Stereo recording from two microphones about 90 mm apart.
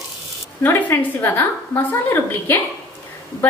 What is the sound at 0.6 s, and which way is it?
A woman's voice, 25° left (ahead or behind).